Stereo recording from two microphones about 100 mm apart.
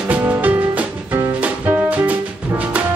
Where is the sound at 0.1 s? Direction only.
15° right (ahead or behind).